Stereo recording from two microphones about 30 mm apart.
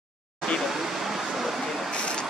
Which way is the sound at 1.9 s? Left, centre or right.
Left.